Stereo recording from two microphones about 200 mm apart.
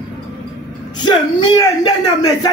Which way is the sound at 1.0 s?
20° left (ahead or behind).